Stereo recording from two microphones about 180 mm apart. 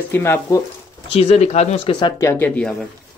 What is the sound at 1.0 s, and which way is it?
Speech, 30° left (ahead or behind).